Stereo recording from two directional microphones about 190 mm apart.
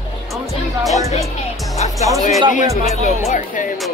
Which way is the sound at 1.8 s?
40° left (ahead or behind).